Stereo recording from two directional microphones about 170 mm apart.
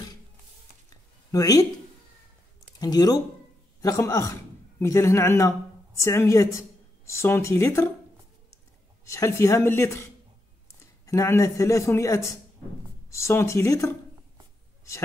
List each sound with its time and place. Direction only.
1.3 s speech: 20° left (ahead or behind)
2.8 s a man's voice: 25° left (ahead or behind)
9.0 s a man's voice: 20° left (ahead or behind)
11.1 s a man's voice: 15° left (ahead or behind)